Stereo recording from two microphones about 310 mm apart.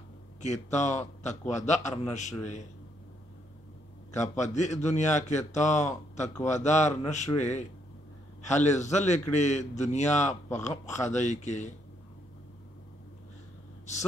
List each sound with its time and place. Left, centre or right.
0.4 s a man's voice: left
4.6 s a man's voice: left